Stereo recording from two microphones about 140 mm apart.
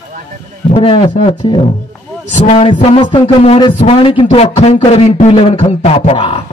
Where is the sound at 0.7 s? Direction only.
45° left (ahead or behind).